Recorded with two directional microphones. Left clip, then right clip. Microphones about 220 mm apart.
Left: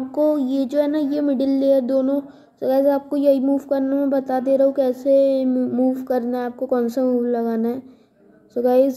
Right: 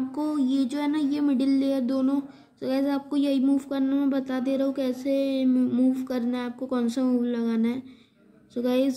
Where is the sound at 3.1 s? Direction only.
10° right (ahead or behind).